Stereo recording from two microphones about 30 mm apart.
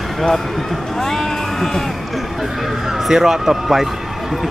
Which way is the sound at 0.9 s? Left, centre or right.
Centre.